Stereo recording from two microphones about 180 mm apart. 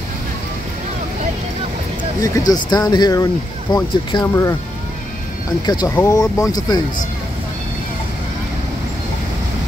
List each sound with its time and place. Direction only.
2.1 s speech: 20° left (ahead or behind)
5.7 s speech: 25° left (ahead or behind)